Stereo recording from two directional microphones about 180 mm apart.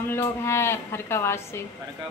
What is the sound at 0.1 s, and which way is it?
A woman's voice, 15° left (ahead or behind).